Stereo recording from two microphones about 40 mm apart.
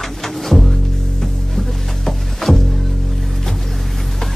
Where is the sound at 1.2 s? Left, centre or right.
Centre.